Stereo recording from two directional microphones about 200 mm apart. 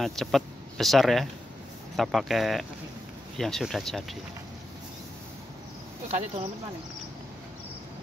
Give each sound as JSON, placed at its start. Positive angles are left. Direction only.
{"t": 0.0, "sound": "speech", "side_deg": 0}
{"t": 6.0, "sound": "speech", "side_deg": -30}